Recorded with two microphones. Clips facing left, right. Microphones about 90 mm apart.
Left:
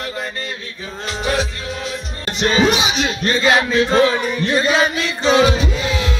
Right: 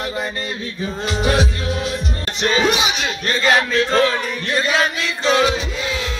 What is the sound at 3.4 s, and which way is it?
Chant, 10° left (ahead or behind).